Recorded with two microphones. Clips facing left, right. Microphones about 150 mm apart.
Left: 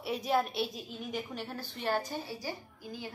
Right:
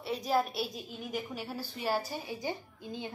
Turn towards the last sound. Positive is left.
turn(degrees=-20)  # may be behind; listen again after turning